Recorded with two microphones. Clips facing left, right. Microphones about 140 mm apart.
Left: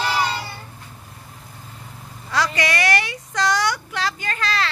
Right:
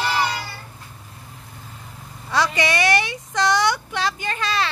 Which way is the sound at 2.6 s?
25° right (ahead or behind).